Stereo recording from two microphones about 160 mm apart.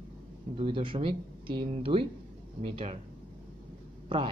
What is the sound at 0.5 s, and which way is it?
Speech, 30° right (ahead or behind).